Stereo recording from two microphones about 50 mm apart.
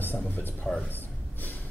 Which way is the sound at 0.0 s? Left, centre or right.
Left.